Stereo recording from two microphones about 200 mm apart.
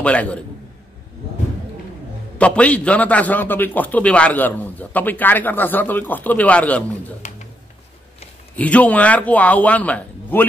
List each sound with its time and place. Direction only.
0.0 s a man's voice: 5° left (ahead or behind)
2.3 s a man's voice: 5° left (ahead or behind)
8.5 s a man's voice: 5° left (ahead or behind)